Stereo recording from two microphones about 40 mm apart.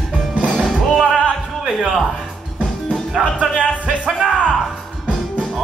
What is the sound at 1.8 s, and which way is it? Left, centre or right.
Speech, centre.